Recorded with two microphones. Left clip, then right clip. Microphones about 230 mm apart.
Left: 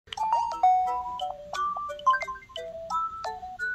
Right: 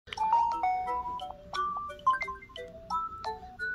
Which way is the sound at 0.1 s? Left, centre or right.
Left.